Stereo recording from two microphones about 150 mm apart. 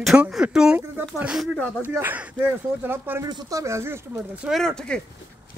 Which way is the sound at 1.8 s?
10° right (ahead or behind).